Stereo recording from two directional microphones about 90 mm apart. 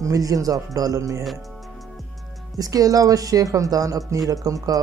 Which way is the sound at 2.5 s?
40° right (ahead or behind).